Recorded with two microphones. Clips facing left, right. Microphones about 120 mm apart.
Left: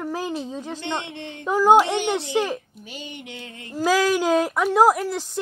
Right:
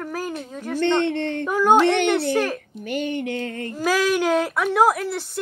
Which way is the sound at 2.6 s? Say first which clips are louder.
Right 12 dB; 60° right (ahead or behind).